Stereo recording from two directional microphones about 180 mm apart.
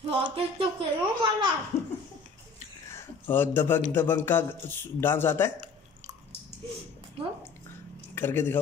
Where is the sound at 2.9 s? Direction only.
10° left (ahead or behind).